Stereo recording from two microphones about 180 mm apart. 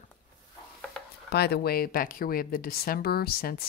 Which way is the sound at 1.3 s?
65° left (ahead or behind).